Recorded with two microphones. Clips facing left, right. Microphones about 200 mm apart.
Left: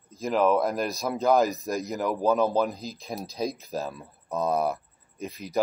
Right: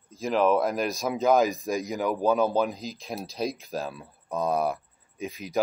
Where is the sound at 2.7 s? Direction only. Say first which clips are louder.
Even; 15° right (ahead or behind).